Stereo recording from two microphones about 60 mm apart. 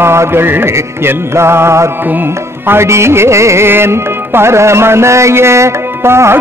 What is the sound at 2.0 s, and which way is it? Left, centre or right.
Music, right.